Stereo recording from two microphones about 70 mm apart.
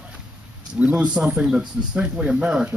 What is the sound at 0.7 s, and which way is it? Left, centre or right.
Speech, centre.